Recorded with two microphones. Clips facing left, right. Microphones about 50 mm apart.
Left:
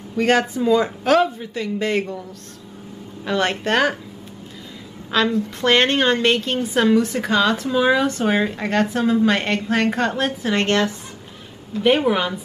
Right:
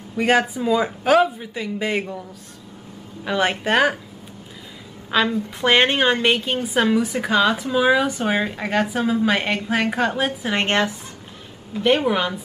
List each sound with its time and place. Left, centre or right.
0.1 s a woman's voice: centre
3.3 s a woman's voice: centre
5.1 s a woman's voice: centre
10.6 s a woman's voice: centre
11.8 s a woman's voice: centre